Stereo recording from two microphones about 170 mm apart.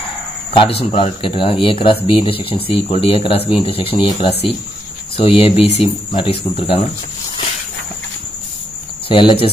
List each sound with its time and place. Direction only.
0.5 s speech: 30° left (ahead or behind)
9.1 s speech: 30° left (ahead or behind)